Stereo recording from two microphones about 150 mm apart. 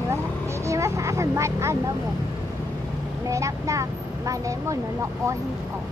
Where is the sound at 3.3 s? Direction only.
20° right (ahead or behind).